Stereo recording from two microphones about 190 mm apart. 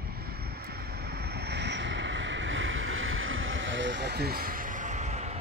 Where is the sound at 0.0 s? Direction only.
55° right (ahead or behind).